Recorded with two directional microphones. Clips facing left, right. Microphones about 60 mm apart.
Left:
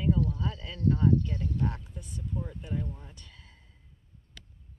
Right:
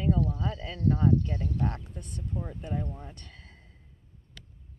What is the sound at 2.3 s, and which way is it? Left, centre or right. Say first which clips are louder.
Speech: right 1 dB; right.